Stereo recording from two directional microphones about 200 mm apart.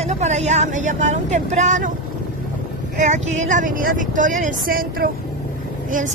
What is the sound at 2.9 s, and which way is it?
A woman's voice, 35° right (ahead or behind).